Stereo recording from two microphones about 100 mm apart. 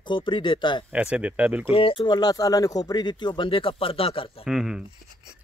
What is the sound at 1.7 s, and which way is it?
Speech, 65° left (ahead or behind).